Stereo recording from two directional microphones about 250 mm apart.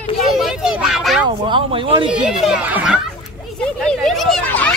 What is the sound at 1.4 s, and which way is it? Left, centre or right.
Speech, centre.